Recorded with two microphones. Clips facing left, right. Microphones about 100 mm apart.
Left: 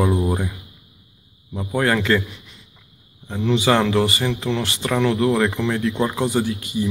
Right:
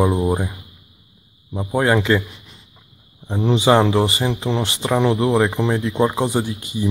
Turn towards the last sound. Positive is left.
turn(degrees=-25)  # may be behind; listen again after turning